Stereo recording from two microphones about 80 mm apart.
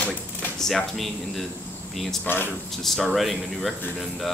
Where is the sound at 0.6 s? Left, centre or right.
Centre.